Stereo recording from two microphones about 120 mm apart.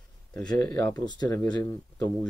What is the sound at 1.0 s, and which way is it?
Speech, 35° left (ahead or behind).